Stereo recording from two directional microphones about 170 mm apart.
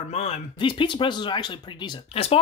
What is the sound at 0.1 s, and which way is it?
Speech, 35° left (ahead or behind).